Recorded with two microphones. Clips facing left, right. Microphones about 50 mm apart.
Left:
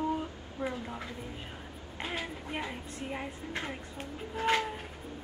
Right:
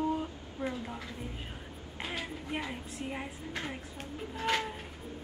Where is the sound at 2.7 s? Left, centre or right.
Centre.